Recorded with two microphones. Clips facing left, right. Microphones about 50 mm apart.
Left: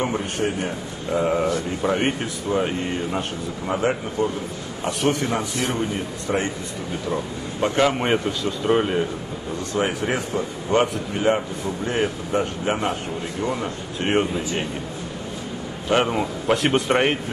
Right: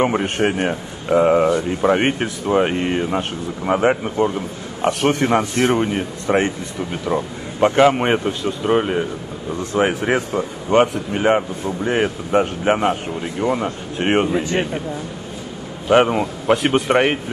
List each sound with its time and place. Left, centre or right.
0.0 s speech: right
0.4 s a man's voice: right
1.1 s speech: right
1.9 s speech: right
7.6 s speech: right
8.6 s speech: centre
9.8 s speech: right
14.3 s a man's voice: right
15.9 s speech: right
16.5 s a man's voice: centre